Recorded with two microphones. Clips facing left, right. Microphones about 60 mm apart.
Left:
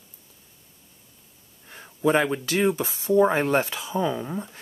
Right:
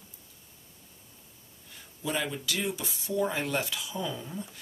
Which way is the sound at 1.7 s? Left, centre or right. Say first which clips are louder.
Left 12 dB; left.